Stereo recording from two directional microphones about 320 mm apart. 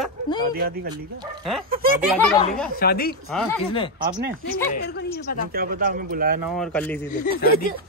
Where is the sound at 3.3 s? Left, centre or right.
Centre.